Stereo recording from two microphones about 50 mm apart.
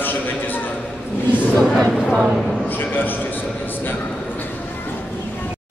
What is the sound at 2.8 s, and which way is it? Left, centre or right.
Speech, left.